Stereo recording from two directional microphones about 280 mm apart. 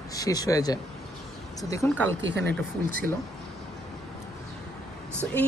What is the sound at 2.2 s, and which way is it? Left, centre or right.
Speech, right.